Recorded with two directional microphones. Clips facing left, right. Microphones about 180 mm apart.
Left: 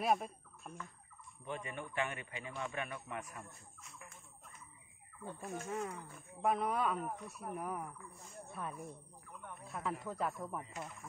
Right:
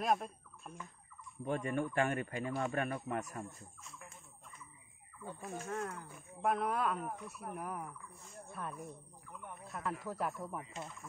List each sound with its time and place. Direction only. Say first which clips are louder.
0.0 s speech: even; centre (ahead or behind)
1.4 s a man's voice: right 8 dB; 45° right (ahead or behind)
5.2 s speech: even; 10° right (ahead or behind)
5.7 s speech: right 1 dB; 5° left (ahead or behind)